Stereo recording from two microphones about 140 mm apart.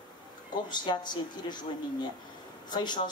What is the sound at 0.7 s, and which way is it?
Speech, 30° left (ahead or behind).